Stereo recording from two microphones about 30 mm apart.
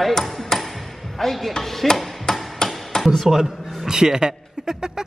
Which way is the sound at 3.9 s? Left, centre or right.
Right.